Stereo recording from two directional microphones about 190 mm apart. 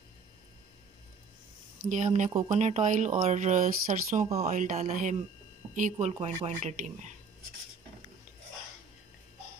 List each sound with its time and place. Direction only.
1.9 s speech: 40° right (ahead or behind)